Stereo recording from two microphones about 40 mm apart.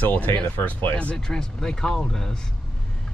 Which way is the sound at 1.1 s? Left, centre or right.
Centre.